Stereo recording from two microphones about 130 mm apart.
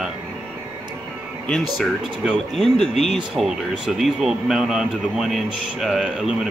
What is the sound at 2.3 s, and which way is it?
Speech, 5° left (ahead or behind).